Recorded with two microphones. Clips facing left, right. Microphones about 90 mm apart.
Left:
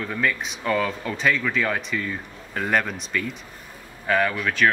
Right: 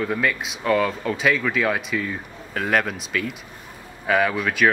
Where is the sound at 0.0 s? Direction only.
5° right (ahead or behind).